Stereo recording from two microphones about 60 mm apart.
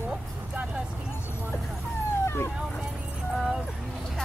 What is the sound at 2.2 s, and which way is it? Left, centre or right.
Vehicle, left.